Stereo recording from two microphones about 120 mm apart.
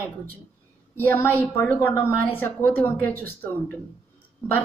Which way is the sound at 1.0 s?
15° left (ahead or behind).